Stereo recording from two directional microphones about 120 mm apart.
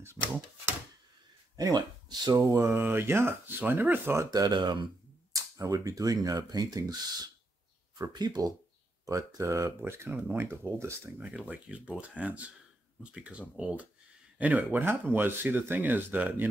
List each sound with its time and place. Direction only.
1.6 s speech: 35° right (ahead or behind)
8.0 s speech: 35° right (ahead or behind); by 16.4 s 15° right (ahead or behind)